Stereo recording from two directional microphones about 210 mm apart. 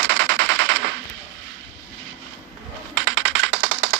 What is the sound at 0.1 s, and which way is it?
Machine gun, 60° right (ahead or behind).